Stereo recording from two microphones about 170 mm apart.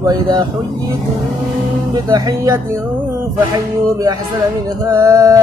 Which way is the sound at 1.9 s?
20° right (ahead or behind).